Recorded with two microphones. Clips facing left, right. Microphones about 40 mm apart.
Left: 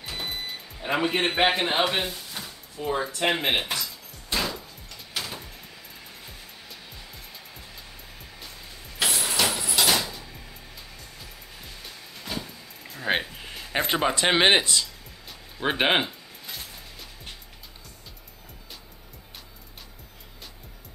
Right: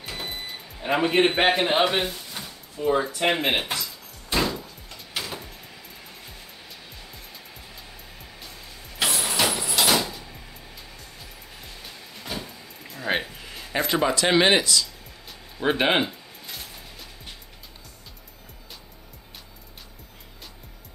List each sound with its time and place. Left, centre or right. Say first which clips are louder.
0.1 s speech: left 1 dB; centre
4.3 s door: right 4 dB; centre
8.9 s vehicle: right 1 dB; centre
10.0 s a sound: right 1 dB; centre
11.0 s music: right 1 dB; centre
14.1 s speech: even; left
15.6 s speech: right 1 dB; centre
16.1 s music: right 1 dB; centre